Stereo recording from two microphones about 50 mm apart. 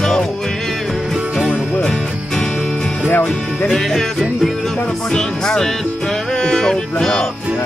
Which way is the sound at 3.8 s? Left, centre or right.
Centre.